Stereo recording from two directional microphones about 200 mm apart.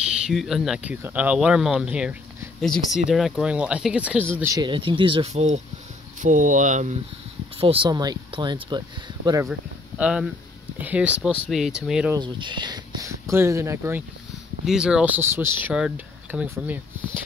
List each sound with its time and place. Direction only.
0.0 s speech: 5° right (ahead or behind)
4.4 s speech: 15° right (ahead or behind); by 7.0 s 40° right (ahead or behind)
7.6 s speech: 25° right (ahead or behind)
9.5 s speech: 5° right (ahead or behind)
12.1 s speech: 20° right (ahead or behind)